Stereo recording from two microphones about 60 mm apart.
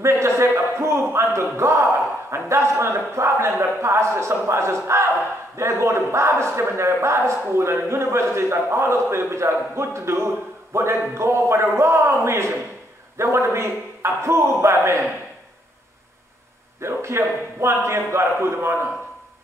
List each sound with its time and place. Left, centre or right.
0.0 s a sound: right
2.3 s a man's voice: right
16.8 s a man's voice: right